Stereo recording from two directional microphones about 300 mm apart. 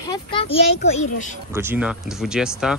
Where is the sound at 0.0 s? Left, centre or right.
Centre.